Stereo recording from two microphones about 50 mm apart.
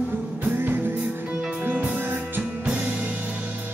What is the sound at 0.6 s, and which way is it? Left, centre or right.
Music, right.